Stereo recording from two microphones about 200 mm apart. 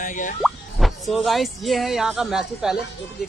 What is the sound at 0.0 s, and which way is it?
Speech, 40° left (ahead or behind).